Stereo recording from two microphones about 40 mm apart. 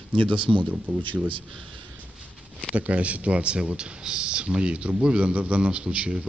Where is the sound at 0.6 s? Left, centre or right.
Right.